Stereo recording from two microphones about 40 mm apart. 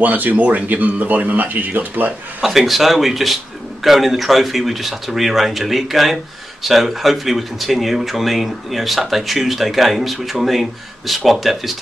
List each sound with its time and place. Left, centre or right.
0.0 s speech: right
2.4 s speech: centre